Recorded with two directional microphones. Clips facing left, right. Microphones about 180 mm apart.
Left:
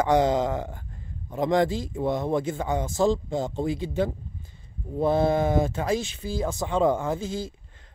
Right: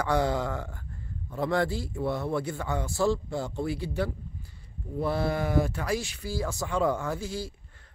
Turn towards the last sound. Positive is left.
turn(degrees=20)  # may be behind; listen again after turning